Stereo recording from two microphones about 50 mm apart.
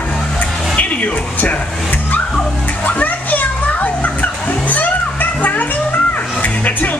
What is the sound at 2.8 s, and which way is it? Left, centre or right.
Children playing, left.